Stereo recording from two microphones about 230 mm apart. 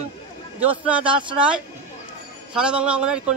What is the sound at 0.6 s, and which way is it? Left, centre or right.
Speech, centre.